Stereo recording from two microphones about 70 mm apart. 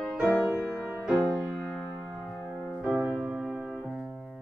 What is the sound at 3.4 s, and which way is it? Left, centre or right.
Music, centre.